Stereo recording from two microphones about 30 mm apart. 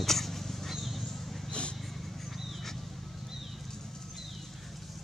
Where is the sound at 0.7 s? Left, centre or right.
Centre.